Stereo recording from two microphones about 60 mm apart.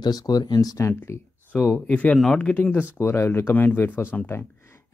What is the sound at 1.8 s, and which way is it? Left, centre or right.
Speech, left.